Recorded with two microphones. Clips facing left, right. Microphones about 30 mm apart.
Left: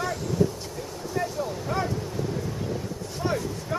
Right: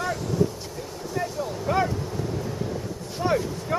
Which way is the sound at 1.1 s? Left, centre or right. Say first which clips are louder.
Even; centre.